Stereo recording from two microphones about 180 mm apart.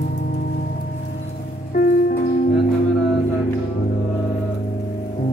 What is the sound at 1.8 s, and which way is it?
Music, 55° left (ahead or behind).